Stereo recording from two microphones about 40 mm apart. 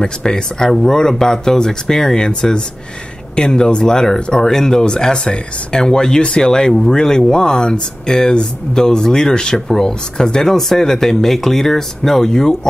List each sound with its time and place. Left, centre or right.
0.0 s speech: centre